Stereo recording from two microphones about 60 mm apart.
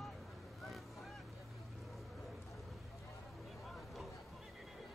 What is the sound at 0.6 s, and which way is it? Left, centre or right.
Boat, centre.